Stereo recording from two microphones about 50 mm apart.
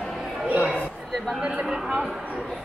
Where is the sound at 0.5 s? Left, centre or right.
Left.